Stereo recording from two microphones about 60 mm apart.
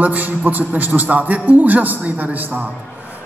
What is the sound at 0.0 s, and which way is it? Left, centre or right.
A man's voice, right.